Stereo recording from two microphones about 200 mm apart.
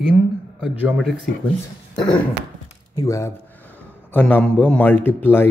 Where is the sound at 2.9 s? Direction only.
15° left (ahead or behind).